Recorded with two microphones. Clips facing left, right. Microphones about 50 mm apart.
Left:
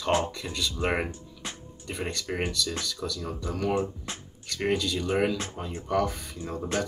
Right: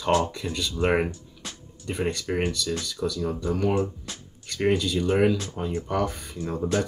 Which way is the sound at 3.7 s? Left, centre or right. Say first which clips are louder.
Right 2 dB; left.